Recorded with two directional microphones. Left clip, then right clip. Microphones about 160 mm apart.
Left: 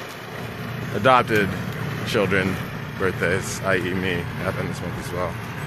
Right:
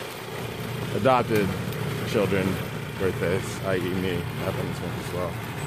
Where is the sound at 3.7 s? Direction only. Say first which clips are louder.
Left 5 dB; 10° left (ahead or behind).